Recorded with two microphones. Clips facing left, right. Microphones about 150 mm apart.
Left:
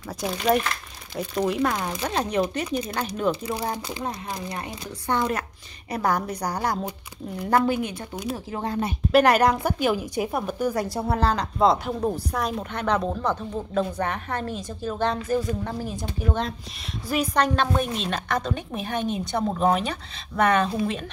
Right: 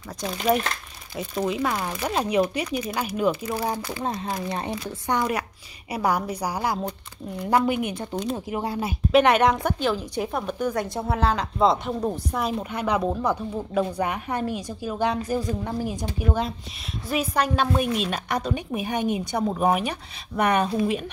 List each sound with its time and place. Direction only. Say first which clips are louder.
0.2 s a woman's voice: left 1 dB; centre (ahead or behind)
4.0 s a woman's voice: right 3 dB; 25° right (ahead or behind)